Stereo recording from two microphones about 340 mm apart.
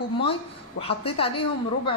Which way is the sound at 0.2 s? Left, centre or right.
Centre.